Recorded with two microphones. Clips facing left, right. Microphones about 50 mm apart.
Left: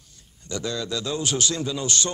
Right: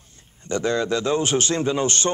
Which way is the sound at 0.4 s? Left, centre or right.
Right.